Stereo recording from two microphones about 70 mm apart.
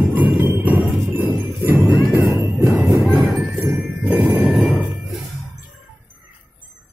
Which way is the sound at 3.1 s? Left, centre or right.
Centre.